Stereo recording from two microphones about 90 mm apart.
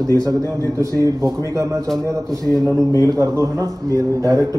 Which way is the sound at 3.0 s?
35° right (ahead or behind).